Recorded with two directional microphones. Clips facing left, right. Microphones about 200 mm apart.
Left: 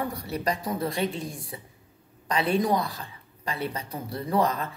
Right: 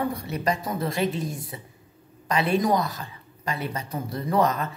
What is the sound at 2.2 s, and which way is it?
A woman's voice, 30° left (ahead or behind).